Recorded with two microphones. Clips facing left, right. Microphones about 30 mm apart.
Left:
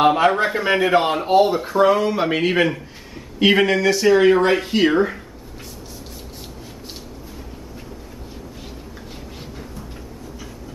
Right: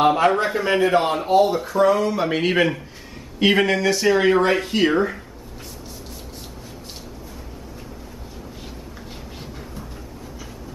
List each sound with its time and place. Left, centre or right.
0.0 s a man's voice: centre
2.4 s speech: centre